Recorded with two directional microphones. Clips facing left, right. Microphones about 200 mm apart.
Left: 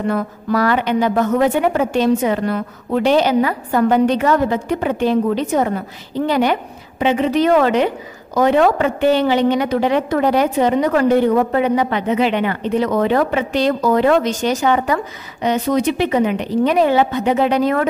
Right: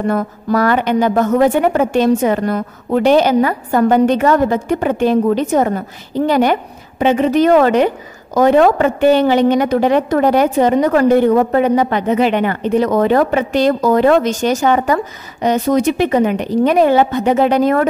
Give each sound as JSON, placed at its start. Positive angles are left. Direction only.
{"t": 0.1, "sound": "a woman's voice", "side_deg": -45}